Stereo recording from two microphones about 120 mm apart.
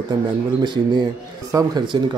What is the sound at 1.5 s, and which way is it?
Speech, 30° right (ahead or behind).